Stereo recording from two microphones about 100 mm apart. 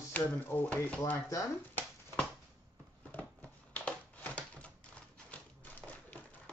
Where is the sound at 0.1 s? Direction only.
15° left (ahead or behind).